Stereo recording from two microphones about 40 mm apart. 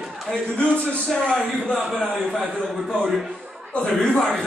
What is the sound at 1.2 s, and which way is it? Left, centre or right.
Speech, left.